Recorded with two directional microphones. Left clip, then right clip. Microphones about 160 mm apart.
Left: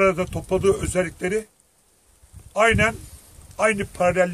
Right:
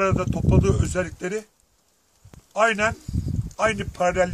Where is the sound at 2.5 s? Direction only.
Centre (ahead or behind).